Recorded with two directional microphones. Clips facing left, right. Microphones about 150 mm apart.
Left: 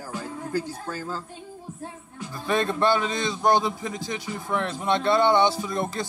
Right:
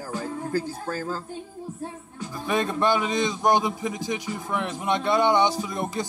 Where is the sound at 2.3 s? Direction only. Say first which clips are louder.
Left 1 dB; 15° right (ahead or behind).